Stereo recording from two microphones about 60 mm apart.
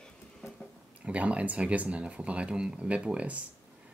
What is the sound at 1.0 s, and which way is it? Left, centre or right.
Speech, right.